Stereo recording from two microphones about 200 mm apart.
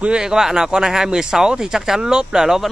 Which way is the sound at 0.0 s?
5° right (ahead or behind).